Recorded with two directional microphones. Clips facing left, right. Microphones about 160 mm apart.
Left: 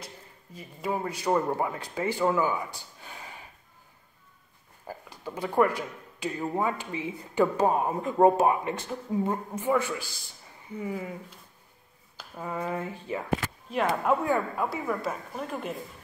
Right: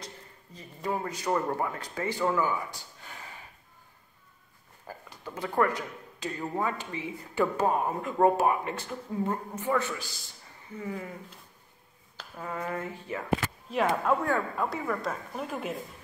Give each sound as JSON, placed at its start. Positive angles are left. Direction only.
{"t": 0.6, "sound": "speech", "side_deg": 10}
{"t": 4.8, "sound": "speech", "side_deg": 15}
{"t": 12.2, "sound": "a sound", "side_deg": 15}
{"t": 12.5, "sound": "speech", "side_deg": 20}
{"t": 13.7, "sound": "speech", "side_deg": 0}